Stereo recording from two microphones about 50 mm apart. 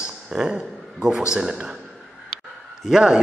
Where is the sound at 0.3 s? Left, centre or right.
Centre.